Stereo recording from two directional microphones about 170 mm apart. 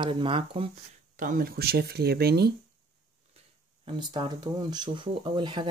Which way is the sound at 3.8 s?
30° right (ahead or behind).